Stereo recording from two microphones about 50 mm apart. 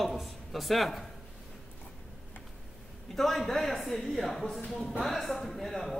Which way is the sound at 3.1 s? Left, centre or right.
Centre.